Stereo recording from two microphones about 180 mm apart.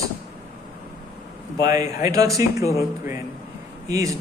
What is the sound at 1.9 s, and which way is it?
Speech, 20° right (ahead or behind).